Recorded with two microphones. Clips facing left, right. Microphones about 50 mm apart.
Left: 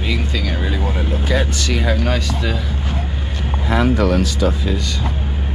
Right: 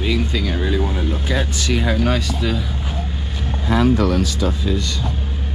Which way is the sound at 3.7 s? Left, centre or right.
Left.